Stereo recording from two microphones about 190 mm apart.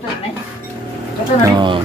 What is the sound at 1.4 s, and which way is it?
Speech, 25° right (ahead or behind).